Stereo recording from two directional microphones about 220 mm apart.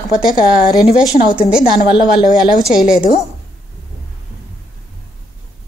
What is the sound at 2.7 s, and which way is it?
Speech, centre (ahead or behind).